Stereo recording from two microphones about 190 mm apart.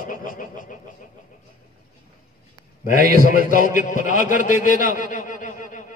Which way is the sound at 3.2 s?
45° left (ahead or behind).